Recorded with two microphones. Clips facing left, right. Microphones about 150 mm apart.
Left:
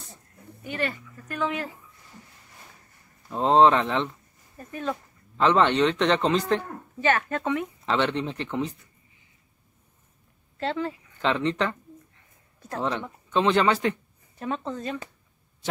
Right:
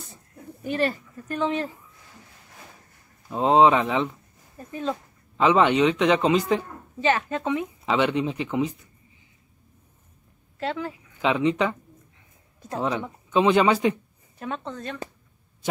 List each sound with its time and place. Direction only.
0.7 s speech: 35° right (ahead or behind)
3.3 s speech: 10° right (ahead or behind)
4.6 s speech: 20° right (ahead or behind)
5.4 s speech: 5° right (ahead or behind)
7.0 s speech: 20° right (ahead or behind)
10.6 s a woman's voice: 5° right (ahead or behind)
12.8 s speech: 10° right (ahead or behind)
14.4 s speech: centre (ahead or behind)